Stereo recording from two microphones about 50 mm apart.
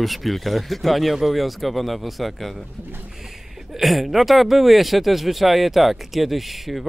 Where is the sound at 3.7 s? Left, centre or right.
Centre.